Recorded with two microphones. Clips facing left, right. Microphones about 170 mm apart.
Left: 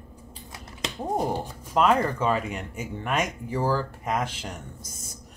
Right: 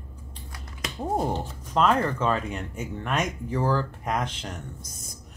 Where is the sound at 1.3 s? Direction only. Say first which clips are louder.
Even; 5° left (ahead or behind).